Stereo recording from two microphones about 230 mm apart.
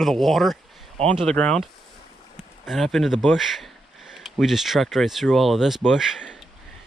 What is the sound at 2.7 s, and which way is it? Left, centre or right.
Speech, centre.